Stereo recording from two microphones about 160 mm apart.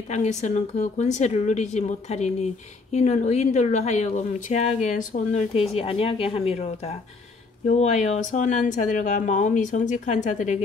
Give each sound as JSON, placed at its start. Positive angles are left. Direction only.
{"t": 0.1, "sound": "a woman's voice", "side_deg": 45}